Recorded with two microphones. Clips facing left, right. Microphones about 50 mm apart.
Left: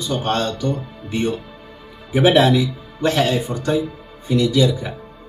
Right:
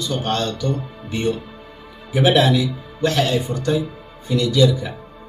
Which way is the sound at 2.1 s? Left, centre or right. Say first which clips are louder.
Left 2 dB; centre.